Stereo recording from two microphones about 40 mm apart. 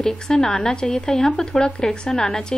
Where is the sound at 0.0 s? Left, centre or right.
Centre.